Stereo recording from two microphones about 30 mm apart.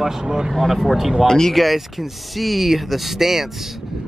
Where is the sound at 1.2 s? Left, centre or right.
Centre.